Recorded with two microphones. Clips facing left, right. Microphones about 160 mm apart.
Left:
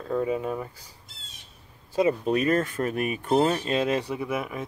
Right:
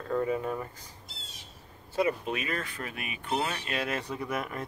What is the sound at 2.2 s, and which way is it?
Speech, 40° left (ahead or behind).